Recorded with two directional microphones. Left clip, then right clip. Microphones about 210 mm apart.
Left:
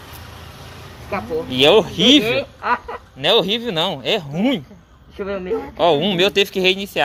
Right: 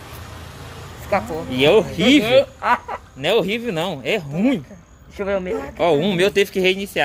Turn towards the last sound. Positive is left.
turn(degrees=0)  # may be behind; listen again after turning